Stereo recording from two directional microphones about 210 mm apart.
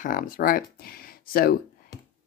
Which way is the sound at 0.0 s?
40° left (ahead or behind).